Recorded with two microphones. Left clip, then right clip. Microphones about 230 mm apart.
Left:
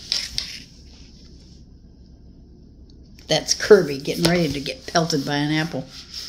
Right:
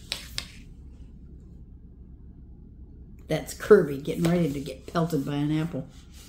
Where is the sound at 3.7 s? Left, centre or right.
Left.